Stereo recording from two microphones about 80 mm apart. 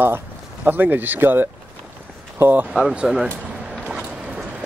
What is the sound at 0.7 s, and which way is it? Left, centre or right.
Speech, right.